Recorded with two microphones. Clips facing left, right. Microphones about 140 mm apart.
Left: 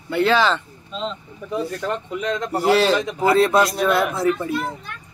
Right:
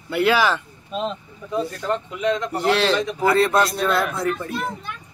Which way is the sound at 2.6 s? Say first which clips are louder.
Left 4 dB; 5° left (ahead or behind).